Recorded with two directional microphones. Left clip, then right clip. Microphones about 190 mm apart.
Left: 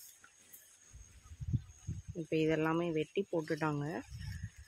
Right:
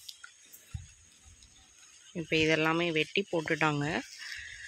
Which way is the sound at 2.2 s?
Centre (ahead or behind).